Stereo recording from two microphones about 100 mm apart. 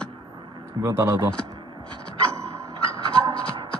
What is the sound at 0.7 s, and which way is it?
Speech, 30° right (ahead or behind).